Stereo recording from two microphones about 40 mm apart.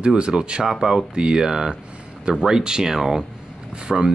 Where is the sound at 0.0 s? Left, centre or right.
Right.